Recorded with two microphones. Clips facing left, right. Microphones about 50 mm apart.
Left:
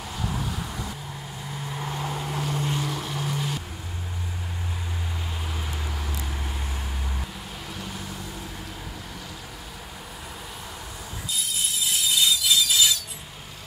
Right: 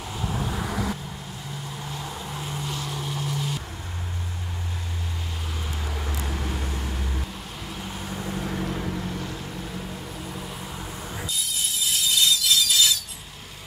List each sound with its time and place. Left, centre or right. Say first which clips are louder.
0.2 s vehicle: right 1 dB; centre
0.7 s vehicle: right 6 dB; right
1.7 s vehicle: left 6 dB; left
2.2 s vehicle: left 4 dB; left
2.9 s vehicle: left 1 dB; centre
11.3 s a sound: left 3 dB; centre